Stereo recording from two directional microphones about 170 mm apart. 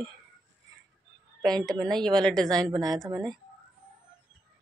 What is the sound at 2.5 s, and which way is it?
Speech, 25° right (ahead or behind).